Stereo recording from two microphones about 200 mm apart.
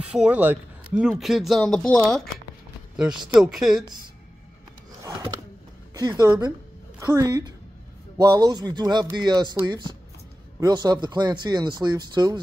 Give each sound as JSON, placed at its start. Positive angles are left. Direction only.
{"t": 0.0, "sound": "speech", "side_deg": -5}
{"t": 3.0, "sound": "speech", "side_deg": -5}
{"t": 5.9, "sound": "a woman's voice", "side_deg": -20}